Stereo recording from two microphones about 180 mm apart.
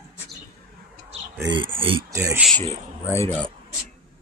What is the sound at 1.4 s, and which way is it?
Speech, 25° right (ahead or behind).